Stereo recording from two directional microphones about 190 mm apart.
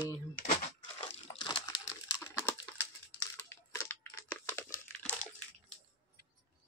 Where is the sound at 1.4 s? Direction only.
25° left (ahead or behind).